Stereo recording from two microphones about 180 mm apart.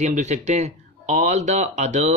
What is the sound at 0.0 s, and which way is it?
Speech, 40° right (ahead or behind).